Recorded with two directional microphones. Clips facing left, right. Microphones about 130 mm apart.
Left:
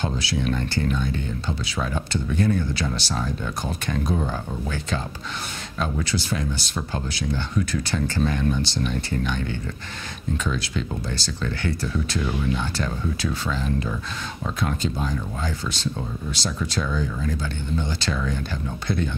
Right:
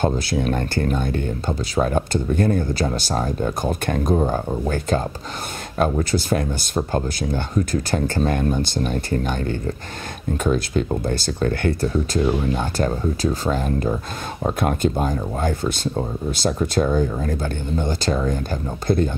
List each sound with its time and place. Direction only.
0.0 s speech: 50° right (ahead or behind)